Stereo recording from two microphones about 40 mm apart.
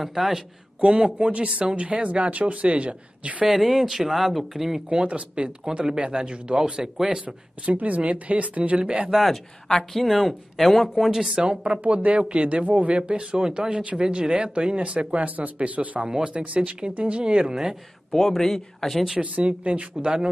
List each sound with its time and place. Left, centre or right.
0.0 s speech: centre
0.7 s speech: right
3.4 s speech: centre
5.0 s speech: right
5.7 s speech: centre
7.7 s speech: right
9.2 s speech: centre
11.0 s speech: centre
11.2 s speech: right
16.1 s speech: right
18.1 s speech: centre
19.1 s speech: right